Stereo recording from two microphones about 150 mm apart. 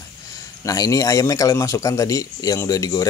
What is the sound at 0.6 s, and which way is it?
Speech, 25° left (ahead or behind).